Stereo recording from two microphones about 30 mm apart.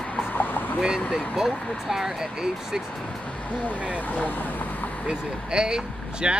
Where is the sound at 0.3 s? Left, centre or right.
Left.